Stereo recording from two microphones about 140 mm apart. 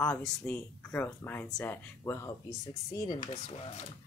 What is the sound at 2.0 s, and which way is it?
Speech, 20° left (ahead or behind).